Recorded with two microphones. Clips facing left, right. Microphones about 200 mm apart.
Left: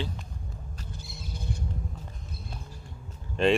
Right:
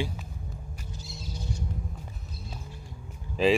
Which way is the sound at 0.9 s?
55° left (ahead or behind).